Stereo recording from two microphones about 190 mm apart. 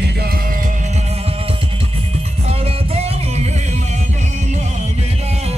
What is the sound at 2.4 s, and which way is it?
Music, 35° right (ahead or behind).